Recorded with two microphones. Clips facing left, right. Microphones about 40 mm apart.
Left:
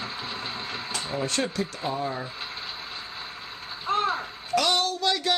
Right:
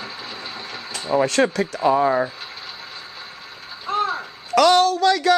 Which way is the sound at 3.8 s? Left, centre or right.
Left.